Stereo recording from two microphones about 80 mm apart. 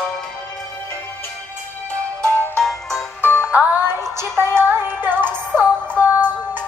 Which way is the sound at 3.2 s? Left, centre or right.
Left.